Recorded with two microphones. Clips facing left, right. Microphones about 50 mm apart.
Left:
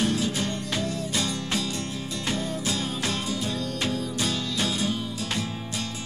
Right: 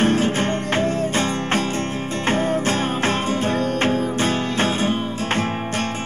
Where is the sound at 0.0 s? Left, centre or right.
Right.